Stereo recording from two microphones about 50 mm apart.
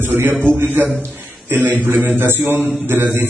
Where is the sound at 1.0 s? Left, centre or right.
Right.